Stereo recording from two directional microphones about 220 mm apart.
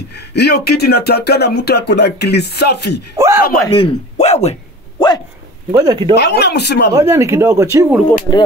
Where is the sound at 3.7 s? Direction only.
25° left (ahead or behind).